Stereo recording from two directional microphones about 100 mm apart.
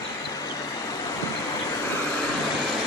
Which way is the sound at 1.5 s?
30° left (ahead or behind).